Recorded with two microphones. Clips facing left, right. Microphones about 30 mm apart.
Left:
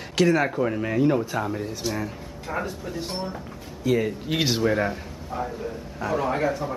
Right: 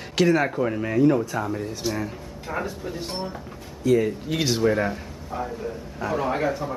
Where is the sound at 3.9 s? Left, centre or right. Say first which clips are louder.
Right 2 dB; centre.